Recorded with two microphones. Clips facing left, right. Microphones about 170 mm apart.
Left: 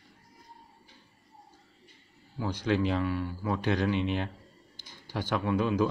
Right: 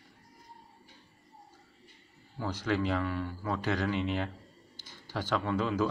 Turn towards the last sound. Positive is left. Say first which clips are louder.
# left 3 dB
turn(degrees=15)  # may be behind; listen again after turning